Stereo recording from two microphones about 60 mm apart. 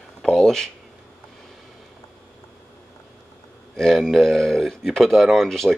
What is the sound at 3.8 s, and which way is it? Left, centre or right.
Speech, centre.